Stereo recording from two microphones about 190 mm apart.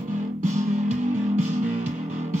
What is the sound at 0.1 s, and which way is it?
Music, 40° right (ahead or behind).